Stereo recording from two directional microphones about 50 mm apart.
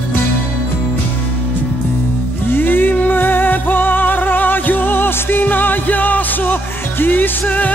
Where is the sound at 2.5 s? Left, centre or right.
Left.